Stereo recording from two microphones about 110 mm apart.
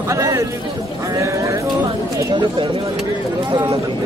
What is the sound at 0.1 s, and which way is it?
Speech, 30° right (ahead or behind).